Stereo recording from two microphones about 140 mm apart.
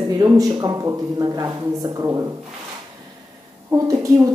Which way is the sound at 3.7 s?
20° right (ahead or behind).